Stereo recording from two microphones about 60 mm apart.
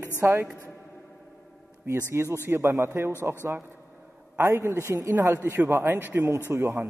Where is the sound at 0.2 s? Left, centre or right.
Right.